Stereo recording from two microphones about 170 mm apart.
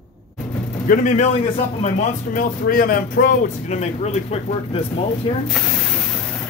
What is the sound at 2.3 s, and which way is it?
Speech, 55° left (ahead or behind).